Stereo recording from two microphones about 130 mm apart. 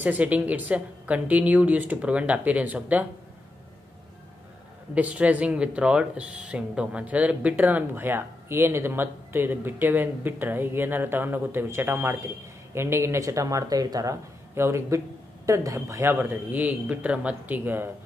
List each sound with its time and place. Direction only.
0.0 s speech: 10° right (ahead or behind)
4.9 s speech: 10° right (ahead or behind)